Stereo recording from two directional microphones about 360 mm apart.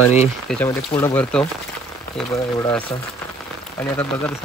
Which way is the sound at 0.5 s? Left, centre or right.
Centre.